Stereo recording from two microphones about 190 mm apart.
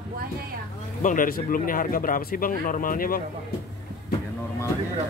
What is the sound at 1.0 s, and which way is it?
Speech, 50° left (ahead or behind).